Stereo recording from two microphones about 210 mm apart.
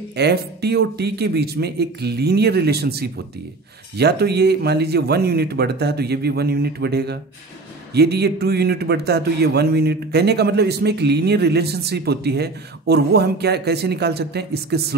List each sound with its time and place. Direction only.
0.1 s a man's voice: 50° right (ahead or behind)